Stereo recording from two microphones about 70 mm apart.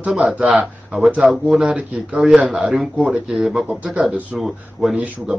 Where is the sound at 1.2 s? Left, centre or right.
Centre.